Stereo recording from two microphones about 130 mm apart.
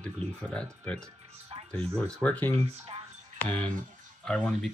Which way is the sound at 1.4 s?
50° right (ahead or behind).